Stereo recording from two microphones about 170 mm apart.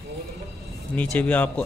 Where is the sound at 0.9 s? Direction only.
10° left (ahead or behind).